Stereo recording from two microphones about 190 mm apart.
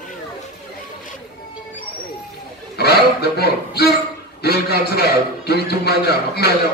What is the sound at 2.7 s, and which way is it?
A man's voice, 60° left (ahead or behind).